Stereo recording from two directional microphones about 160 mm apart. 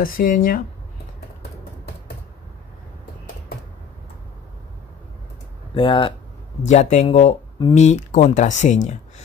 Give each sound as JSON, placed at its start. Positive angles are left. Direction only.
{"t": 0.0, "sound": "speech", "side_deg": 60}
{"t": 5.8, "sound": "speech", "side_deg": 30}
{"t": 6.7, "sound": "speech", "side_deg": 50}